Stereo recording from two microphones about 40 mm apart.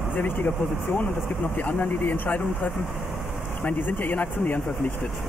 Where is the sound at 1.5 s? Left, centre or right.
Left.